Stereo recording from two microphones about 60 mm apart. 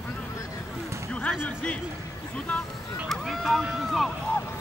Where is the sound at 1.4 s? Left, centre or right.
Left.